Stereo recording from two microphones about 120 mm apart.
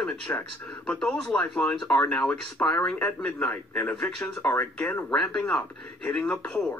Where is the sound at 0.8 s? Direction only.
5° left (ahead or behind).